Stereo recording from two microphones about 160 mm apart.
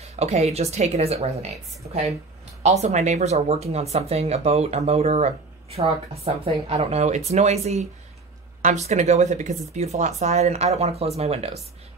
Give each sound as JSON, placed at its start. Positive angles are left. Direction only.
{"t": 0.0, "sound": "speech", "side_deg": -40}
{"t": 2.8, "sound": "speech", "side_deg": -45}